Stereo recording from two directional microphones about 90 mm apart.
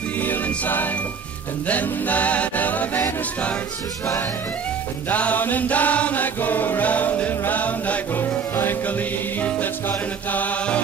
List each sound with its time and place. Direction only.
0.2 s music: 20° left (ahead or behind)
5.1 s chant: 15° left (ahead or behind)